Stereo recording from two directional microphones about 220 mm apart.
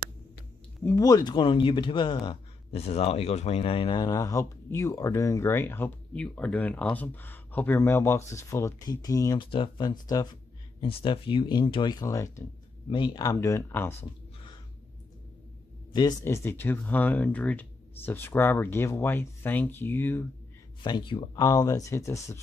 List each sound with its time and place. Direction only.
0.8 s speech: 15° left (ahead or behind)
15.9 s speech: 20° left (ahead or behind)
20.8 s speech: 20° left (ahead or behind)